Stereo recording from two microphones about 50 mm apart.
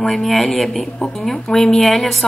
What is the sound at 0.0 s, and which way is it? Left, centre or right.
A woman's voice, centre.